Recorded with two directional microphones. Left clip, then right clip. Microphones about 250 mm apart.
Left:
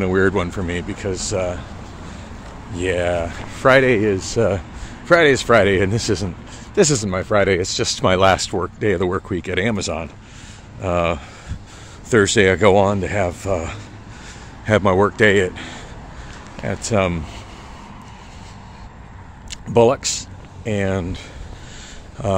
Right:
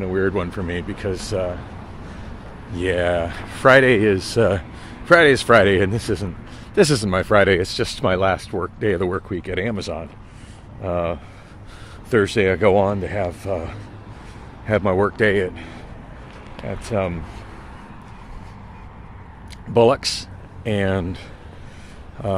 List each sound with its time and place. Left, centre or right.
0.0 s speech: centre
2.7 s speech: centre
19.7 s speech: centre